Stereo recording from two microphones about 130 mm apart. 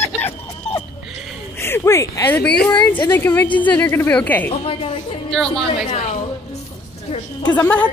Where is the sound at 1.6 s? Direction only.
20° left (ahead or behind).